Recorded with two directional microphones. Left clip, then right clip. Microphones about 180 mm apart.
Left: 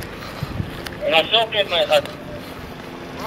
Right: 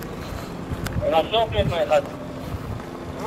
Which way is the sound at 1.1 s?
5° left (ahead or behind).